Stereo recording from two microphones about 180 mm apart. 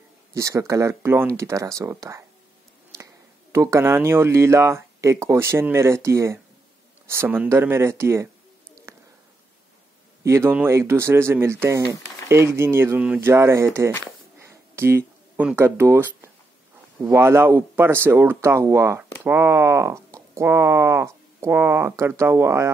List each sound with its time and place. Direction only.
0.3 s speech: 15° right (ahead or behind)
3.5 s speech: 15° right (ahead or behind)
10.2 s speech: 15° right (ahead or behind)
14.4 s a sound: 15° right (ahead or behind)
17.0 s speech: 15° right (ahead or behind)